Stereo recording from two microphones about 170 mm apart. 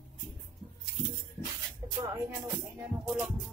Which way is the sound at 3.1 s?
Centre (ahead or behind).